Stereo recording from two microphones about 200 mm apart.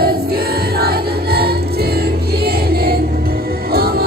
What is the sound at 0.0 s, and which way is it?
Music, 50° right (ahead or behind).